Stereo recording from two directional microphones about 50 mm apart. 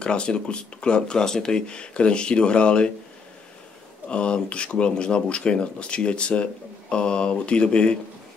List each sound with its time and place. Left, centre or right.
0.0 s speech: centre
4.1 s speech: left